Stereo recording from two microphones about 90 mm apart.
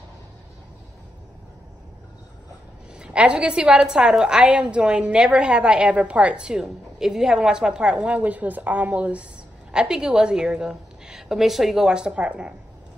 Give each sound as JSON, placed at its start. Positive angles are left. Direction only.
{"t": 2.9, "sound": "a woman's voice", "side_deg": -10}